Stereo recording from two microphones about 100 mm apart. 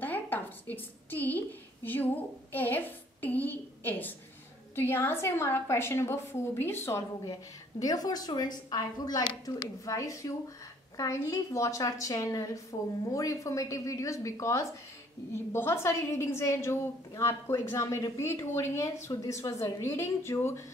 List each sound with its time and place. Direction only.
0.0 s a sound: 20° left (ahead or behind)
2.5 s a woman's voice: 20° left (ahead or behind)
7.8 s a woman's voice: 40° left (ahead or behind)